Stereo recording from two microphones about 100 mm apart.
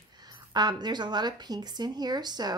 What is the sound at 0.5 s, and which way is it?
Speech, 45° right (ahead or behind).